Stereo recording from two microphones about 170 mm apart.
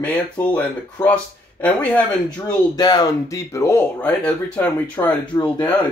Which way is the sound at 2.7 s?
25° left (ahead or behind).